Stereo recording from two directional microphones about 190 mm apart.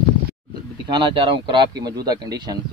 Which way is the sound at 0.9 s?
25° right (ahead or behind).